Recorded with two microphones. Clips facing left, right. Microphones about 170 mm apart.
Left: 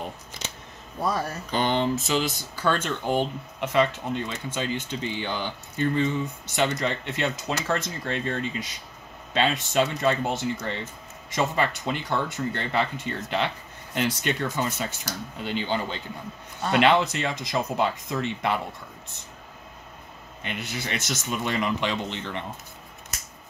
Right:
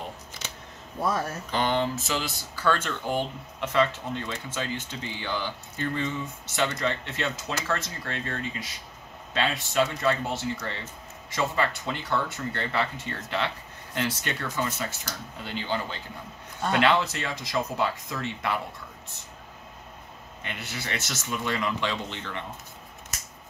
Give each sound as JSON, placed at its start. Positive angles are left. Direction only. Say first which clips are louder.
{"t": 0.9, "sound": "speech", "louder": "left 1 dB", "side_deg": 0}
{"t": 1.5, "sound": "speech", "louder": "left 2 dB", "side_deg": 20}
{"t": 20.4, "sound": "speech", "louder": "left 4 dB", "side_deg": 20}